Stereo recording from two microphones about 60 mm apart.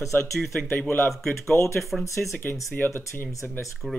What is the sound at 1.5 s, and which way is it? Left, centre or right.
Speech, left.